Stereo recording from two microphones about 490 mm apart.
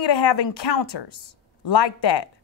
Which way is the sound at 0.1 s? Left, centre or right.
Left.